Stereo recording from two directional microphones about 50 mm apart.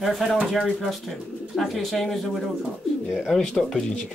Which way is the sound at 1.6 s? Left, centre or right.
Centre.